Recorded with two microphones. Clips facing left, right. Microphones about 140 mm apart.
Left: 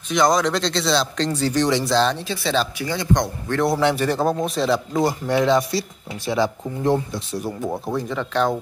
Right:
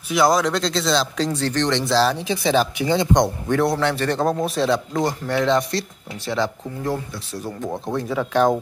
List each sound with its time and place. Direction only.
0.1 s speech: 5° right (ahead or behind)
2.2 s speech: 15° right (ahead or behind)
3.7 s speech: 10° left (ahead or behind)
6.8 s speech: 20° left (ahead or behind)
7.4 s speech: 5° left (ahead or behind)
8.1 s speech: 10° right (ahead or behind)